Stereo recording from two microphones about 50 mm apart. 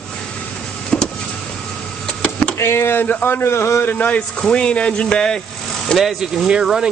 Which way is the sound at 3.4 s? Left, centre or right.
Left.